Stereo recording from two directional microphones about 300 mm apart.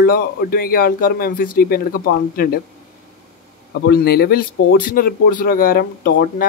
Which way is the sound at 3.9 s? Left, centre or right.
Left.